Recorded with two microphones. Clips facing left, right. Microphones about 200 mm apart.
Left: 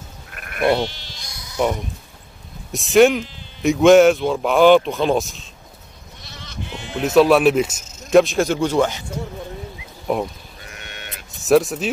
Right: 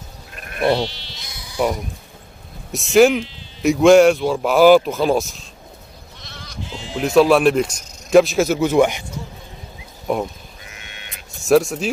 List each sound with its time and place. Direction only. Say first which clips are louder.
0.3 s sheep: even; 25° right (ahead or behind)
0.8 s sheep: even; 45° left (ahead or behind)
2.7 s speech: even; centre (ahead or behind)
6.6 s bleat: even; 60° left (ahead or behind)
7.0 s speech: even; centre (ahead or behind)
10.0 s speech: even; centre (ahead or behind)
10.7 s sheep: left 4 dB; 45° left (ahead or behind)
11.3 s speech: even; centre (ahead or behind)